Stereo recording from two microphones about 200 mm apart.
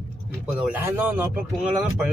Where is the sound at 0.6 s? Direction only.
5° right (ahead or behind).